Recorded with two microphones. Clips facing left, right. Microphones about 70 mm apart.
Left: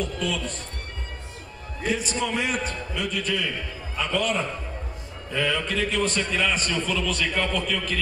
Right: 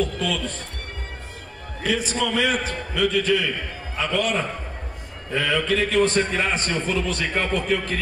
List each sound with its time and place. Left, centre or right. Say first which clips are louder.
0.0 s music: right 3 dB; right
1.9 s a man's voice: right 3 dB; right
5.6 s speech: right 4 dB; right
5.9 s a man's voice: right 6 dB; right